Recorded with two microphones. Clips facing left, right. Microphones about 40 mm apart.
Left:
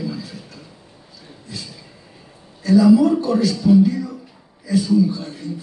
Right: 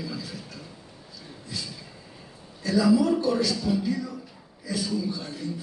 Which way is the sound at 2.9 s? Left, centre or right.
Left.